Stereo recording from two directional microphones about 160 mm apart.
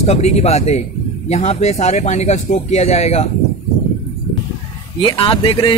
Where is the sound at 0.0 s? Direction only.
45° left (ahead or behind).